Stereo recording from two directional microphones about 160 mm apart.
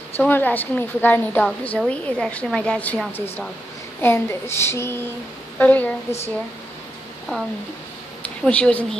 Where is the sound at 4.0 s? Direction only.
15° left (ahead or behind).